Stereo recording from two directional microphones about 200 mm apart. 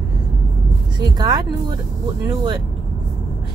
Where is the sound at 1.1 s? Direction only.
20° right (ahead or behind).